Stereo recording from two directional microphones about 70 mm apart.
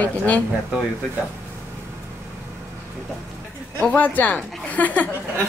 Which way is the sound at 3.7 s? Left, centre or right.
Centre.